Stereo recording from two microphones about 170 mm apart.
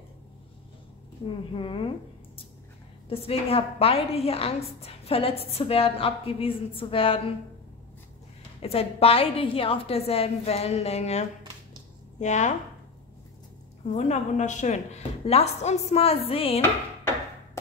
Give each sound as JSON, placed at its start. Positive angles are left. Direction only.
{"t": 1.2, "sound": "a woman's voice", "side_deg": 30}
{"t": 3.1, "sound": "a woman's voice", "side_deg": 35}
{"t": 8.6, "sound": "a woman's voice", "side_deg": 35}
{"t": 13.8, "sound": "a woman's voice", "side_deg": 45}